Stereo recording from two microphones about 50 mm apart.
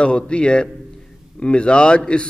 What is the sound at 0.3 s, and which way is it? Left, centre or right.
A man's voice, centre.